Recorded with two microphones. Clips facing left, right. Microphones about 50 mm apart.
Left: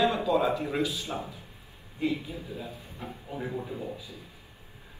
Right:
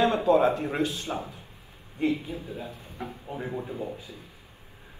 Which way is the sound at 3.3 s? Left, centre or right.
Centre.